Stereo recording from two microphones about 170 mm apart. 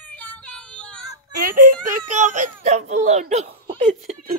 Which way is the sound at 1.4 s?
50° right (ahead or behind).